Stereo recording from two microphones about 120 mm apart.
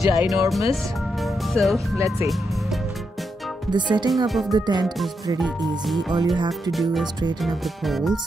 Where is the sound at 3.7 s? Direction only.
40° right (ahead or behind).